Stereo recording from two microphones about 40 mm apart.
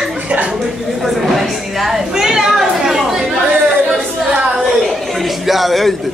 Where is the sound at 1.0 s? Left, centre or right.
Centre.